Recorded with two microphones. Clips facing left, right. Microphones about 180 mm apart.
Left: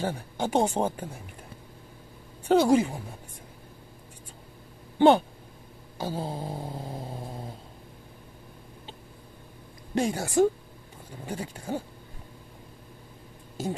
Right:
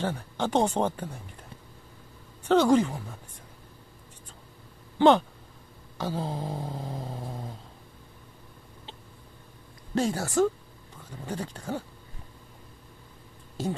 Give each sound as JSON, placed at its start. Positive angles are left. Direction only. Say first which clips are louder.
{"t": 0.0, "sound": "speech", "louder": "even", "side_deg": 10}
{"t": 2.4, "sound": "speech", "louder": "even", "side_deg": 10}
{"t": 4.9, "sound": "speech", "louder": "left 1 dB", "side_deg": 10}
{"t": 5.9, "sound": "a sound", "louder": "right 1 dB", "side_deg": 10}
{"t": 9.9, "sound": "speech", "louder": "left 1 dB", "side_deg": 15}